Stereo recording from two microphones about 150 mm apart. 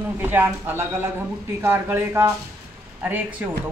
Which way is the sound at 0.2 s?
15° right (ahead or behind).